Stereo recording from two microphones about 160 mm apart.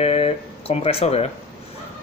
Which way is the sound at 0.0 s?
40° left (ahead or behind).